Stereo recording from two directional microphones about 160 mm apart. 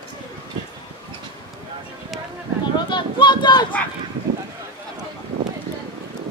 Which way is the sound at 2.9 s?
30° left (ahead or behind).